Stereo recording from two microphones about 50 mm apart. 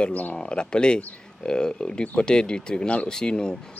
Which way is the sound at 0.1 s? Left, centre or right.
Left.